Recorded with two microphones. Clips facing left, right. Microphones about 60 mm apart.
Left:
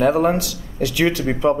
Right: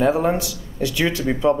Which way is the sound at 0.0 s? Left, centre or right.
Left.